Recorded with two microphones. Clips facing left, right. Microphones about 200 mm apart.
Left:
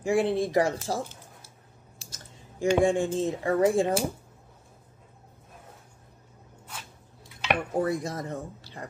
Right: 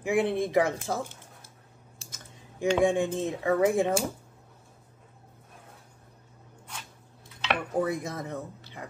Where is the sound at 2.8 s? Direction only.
20° right (ahead or behind).